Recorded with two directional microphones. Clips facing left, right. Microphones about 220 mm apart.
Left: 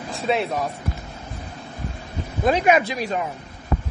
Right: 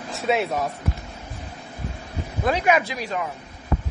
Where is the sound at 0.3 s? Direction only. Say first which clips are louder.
Even; centre (ahead or behind).